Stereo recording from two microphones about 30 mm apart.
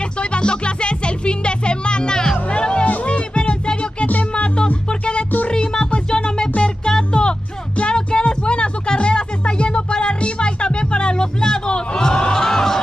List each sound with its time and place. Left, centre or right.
0.2 s music: left
2.5 s music: left
4.0 s music: left
6.0 s music: left